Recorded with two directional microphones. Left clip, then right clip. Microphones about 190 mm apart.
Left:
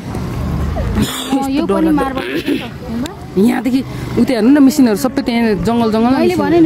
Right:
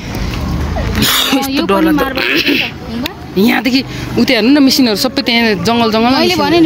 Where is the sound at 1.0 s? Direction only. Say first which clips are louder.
Right 8 dB; 5° left (ahead or behind).